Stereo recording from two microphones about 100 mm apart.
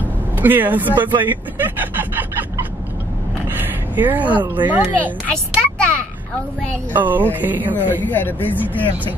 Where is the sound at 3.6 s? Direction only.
20° right (ahead or behind).